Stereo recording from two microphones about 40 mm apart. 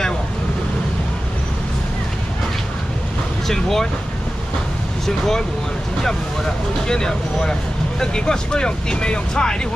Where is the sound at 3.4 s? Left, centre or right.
Centre.